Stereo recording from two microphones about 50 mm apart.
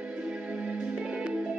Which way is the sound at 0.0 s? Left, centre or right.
Right.